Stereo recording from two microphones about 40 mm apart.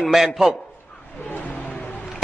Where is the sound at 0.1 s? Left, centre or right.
Centre.